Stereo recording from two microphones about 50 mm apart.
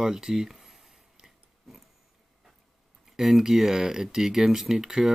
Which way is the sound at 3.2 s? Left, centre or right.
Centre.